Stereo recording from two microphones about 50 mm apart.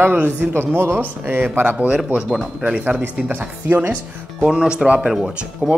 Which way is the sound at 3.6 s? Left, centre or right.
Right.